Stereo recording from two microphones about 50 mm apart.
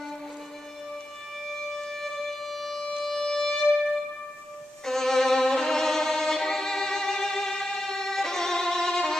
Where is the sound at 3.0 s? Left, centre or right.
Centre.